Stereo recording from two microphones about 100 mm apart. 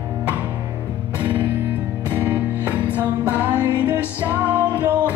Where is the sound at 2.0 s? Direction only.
15° right (ahead or behind).